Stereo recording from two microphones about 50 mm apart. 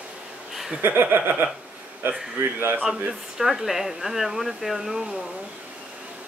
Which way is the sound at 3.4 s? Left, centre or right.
Centre.